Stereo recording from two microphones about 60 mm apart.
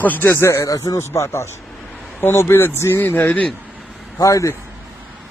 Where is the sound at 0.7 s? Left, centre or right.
Left.